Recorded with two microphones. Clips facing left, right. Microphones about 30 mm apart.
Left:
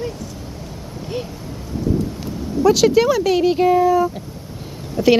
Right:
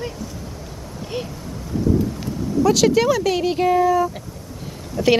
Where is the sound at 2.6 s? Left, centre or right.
Centre.